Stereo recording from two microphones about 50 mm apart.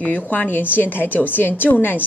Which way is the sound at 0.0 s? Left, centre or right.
Left.